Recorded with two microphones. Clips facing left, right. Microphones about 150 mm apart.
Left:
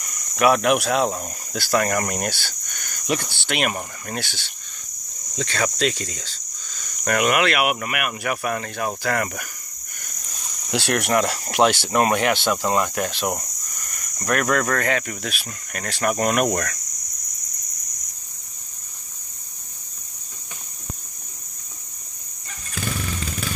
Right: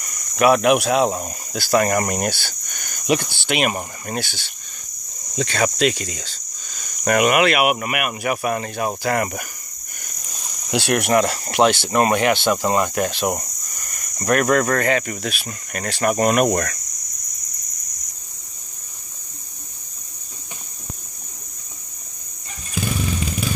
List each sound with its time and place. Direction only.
0.4 s speech: 5° right (ahead or behind)
5.5 s speech: 15° right (ahead or behind)
10.7 s speech: 15° right (ahead or behind)
22.8 s motorcycle: 15° right (ahead or behind)